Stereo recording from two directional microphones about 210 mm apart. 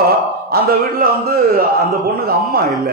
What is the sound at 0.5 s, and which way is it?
Speech, 45° right (ahead or behind).